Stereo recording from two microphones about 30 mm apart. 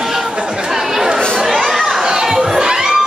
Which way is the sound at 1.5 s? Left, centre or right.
Centre.